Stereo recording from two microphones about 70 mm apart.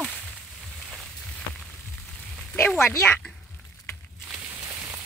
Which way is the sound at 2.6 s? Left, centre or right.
Centre.